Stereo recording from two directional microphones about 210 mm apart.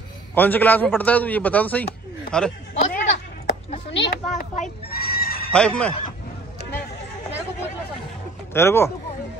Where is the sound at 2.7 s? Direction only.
35° left (ahead or behind).